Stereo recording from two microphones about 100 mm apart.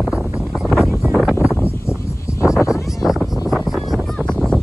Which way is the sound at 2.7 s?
Centre (ahead or behind).